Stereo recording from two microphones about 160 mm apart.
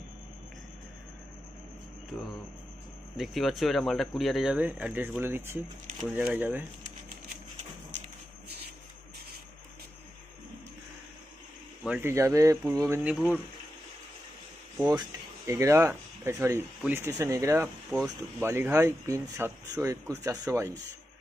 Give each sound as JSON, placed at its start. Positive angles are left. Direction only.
{"t": 3.2, "sound": "speech", "side_deg": 0}
{"t": 11.8, "sound": "speech", "side_deg": -10}
{"t": 13.1, "sound": "speech", "side_deg": -5}
{"t": 14.9, "sound": "speech", "side_deg": -20}